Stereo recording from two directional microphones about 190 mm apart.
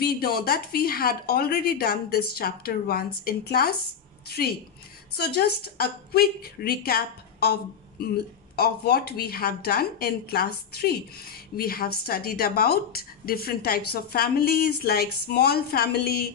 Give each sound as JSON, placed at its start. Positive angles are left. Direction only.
{"t": 0.0, "sound": "a woman's voice", "side_deg": 55}
{"t": 8.5, "sound": "speech", "side_deg": 55}